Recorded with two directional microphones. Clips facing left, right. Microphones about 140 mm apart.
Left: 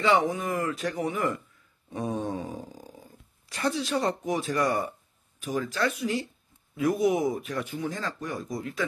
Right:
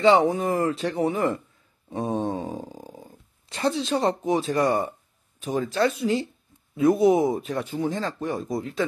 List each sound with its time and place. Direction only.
0.0 s speech: 30° right (ahead or behind)